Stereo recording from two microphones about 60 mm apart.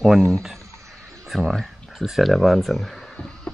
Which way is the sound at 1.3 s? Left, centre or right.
Centre.